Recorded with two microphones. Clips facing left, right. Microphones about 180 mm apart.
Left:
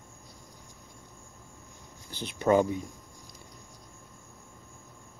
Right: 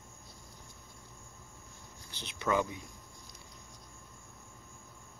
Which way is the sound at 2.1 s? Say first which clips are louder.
Left 8 dB; 45° left (ahead or behind).